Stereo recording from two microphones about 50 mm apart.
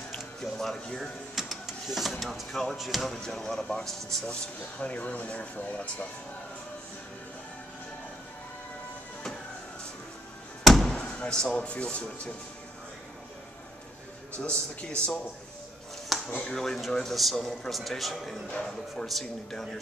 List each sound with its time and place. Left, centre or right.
0.4 s speech: centre
1.3 s a man's voice: centre
4.7 s speech: left
10.6 s slam: centre
11.1 s speech: centre
14.3 s speech: left
16.1 s a sound: centre
16.4 s a man's voice: centre
18.5 s speech: centre